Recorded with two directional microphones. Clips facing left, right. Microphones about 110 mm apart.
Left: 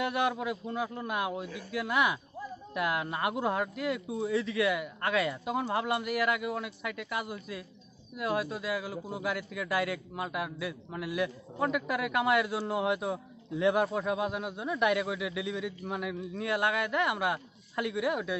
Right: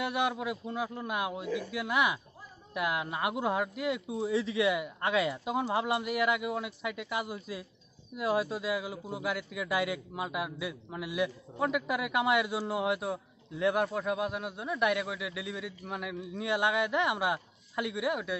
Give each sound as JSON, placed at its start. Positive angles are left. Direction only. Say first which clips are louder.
{"t": 0.0, "sound": "a man's voice", "louder": "left 1 dB", "side_deg": -10}
{"t": 4.3, "sound": "a man's voice", "louder": "right 1 dB", "side_deg": -25}